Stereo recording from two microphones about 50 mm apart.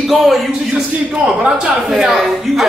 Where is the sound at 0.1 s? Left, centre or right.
Centre.